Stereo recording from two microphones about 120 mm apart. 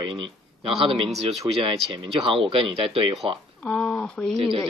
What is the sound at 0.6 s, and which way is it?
A man's voice, 50° right (ahead or behind).